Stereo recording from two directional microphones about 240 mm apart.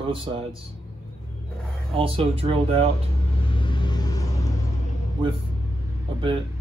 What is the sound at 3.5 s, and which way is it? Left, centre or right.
Vehicle, centre.